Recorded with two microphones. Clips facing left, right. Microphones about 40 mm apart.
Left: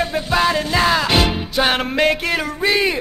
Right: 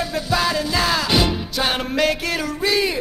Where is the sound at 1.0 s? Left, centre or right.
Left.